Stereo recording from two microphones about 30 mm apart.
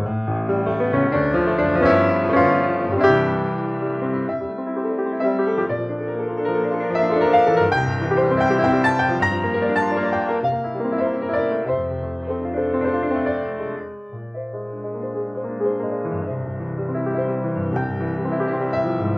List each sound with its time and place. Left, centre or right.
0.5 s music: centre
4.8 s music: centre
17.1 s music: centre